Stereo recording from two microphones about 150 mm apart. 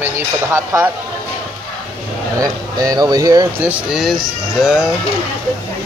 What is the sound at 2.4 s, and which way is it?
Speech, 25° right (ahead or behind).